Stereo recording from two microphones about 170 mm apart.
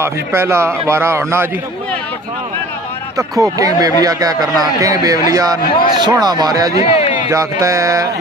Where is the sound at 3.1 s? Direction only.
20° right (ahead or behind).